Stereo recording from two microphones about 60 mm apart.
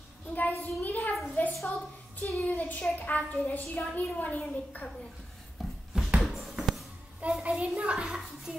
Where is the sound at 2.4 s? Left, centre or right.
Left.